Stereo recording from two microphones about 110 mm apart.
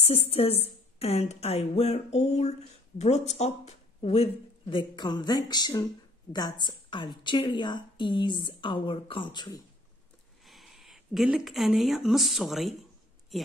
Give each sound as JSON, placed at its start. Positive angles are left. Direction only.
{"t": 0.0, "sound": "a woman's voice", "side_deg": 65}
{"t": 10.4, "sound": "a woman's voice", "side_deg": 0}